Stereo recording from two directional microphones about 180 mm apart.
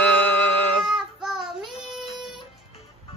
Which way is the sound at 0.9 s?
Centre (ahead or behind).